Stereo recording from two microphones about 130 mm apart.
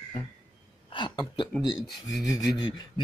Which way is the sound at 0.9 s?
35° left (ahead or behind).